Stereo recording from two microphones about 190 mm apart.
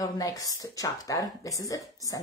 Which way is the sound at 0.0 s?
20° left (ahead or behind).